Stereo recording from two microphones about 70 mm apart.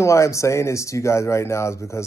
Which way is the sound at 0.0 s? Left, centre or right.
Left.